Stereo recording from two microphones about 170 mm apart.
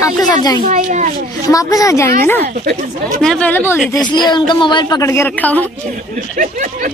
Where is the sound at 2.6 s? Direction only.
55° right (ahead or behind).